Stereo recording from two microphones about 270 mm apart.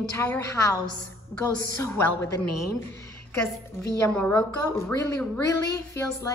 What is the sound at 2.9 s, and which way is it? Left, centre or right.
A woman's voice, centre.